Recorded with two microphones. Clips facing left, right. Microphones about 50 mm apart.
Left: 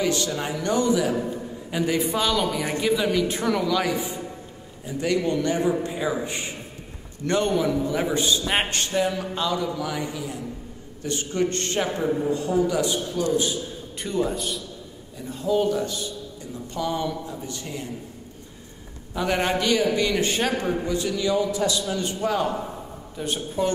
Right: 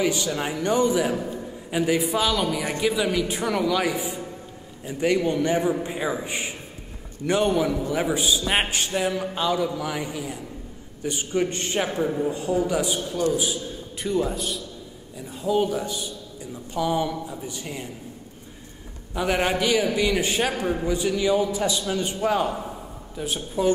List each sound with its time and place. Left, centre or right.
0.0 s a man's voice: centre
1.7 s a man's voice: centre
4.8 s a man's voice: right
13.4 s a man's voice: centre
19.1 s a man's voice: centre
23.1 s a man's voice: centre